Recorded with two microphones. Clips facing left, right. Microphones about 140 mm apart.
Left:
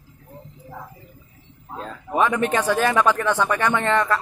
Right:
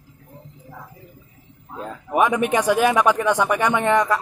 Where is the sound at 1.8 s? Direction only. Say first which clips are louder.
Right 2 dB; 15° right (ahead or behind).